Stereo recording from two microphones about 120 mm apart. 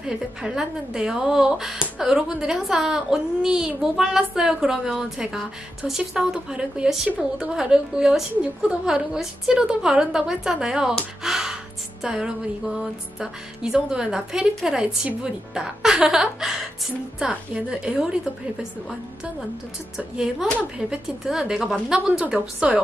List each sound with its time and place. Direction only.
0.0 s a woman's voice: 5° right (ahead or behind)
20.7 s a woman's voice: 5° right (ahead or behind)